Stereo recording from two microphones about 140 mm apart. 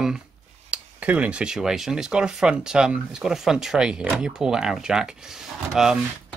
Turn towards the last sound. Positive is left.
turn(degrees=-5)  # may be behind; listen again after turning